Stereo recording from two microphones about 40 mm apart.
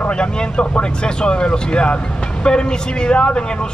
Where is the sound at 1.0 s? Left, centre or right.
Left.